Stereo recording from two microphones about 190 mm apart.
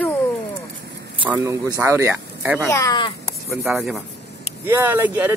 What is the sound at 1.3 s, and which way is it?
Speech, 15° right (ahead or behind).